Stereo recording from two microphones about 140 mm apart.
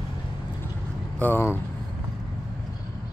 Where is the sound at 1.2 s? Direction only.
15° left (ahead or behind).